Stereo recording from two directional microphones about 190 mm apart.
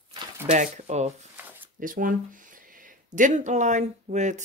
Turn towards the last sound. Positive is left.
turn(degrees=-40)  # may be behind; listen again after turning